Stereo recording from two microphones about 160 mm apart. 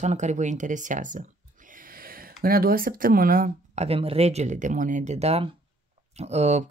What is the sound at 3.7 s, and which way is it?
Speech, 40° right (ahead or behind).